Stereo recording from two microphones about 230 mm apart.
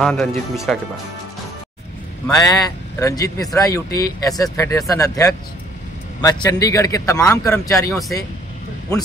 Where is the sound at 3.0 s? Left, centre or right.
Centre.